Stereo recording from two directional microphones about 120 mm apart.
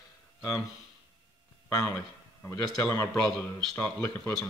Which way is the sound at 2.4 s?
15° left (ahead or behind).